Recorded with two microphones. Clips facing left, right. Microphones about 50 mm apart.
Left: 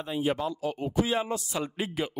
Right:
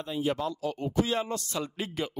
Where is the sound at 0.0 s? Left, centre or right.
Centre.